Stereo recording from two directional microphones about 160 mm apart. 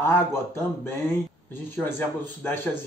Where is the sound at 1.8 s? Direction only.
15° left (ahead or behind).